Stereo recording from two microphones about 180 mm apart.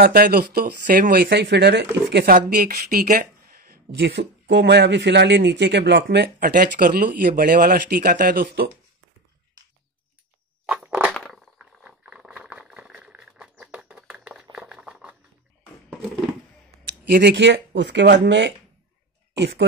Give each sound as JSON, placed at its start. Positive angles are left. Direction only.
{"t": 0.0, "sound": "speech", "side_deg": -55}
{"t": 4.0, "sound": "speech", "side_deg": -75}
{"t": 10.7, "sound": "a sound", "side_deg": -5}
{"t": 11.8, "sound": "sewing machine", "side_deg": -5}
{"t": 17.3, "sound": "speech", "side_deg": -80}
{"t": 19.3, "sound": "speech", "side_deg": -85}